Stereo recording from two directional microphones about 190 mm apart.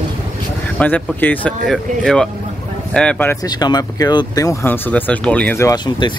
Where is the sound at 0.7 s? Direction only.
10° left (ahead or behind).